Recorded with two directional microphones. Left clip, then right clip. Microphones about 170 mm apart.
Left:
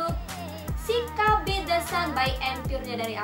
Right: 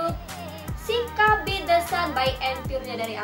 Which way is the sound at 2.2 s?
15° right (ahead or behind).